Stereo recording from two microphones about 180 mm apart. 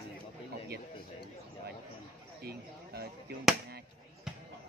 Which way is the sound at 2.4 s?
60° right (ahead or behind).